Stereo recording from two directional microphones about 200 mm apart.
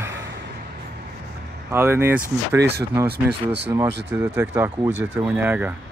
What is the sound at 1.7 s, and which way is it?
Speech, 10° right (ahead or behind).